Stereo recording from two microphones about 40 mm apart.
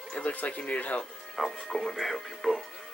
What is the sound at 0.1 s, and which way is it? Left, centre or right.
Speech, left.